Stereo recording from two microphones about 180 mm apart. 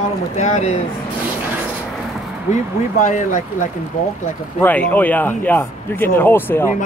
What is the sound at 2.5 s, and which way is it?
Speech, 45° left (ahead or behind).